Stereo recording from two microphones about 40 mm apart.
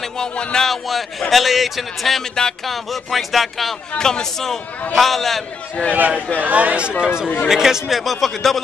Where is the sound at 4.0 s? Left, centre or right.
Centre.